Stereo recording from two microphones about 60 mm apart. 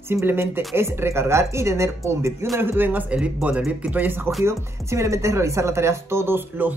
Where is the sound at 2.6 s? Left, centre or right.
Right.